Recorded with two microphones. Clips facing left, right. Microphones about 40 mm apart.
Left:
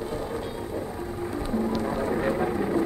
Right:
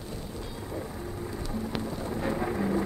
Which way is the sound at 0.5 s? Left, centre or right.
Centre.